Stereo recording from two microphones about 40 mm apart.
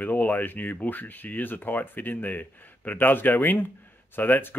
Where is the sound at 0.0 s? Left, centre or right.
Left.